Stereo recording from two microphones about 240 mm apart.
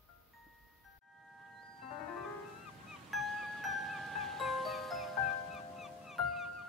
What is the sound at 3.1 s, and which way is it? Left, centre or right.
Music, centre.